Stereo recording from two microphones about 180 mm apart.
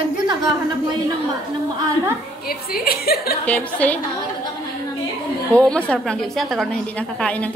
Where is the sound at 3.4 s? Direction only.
10° left (ahead or behind).